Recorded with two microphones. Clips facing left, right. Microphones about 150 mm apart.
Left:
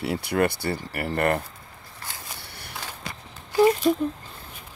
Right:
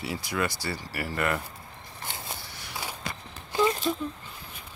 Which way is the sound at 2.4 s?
60° left (ahead or behind).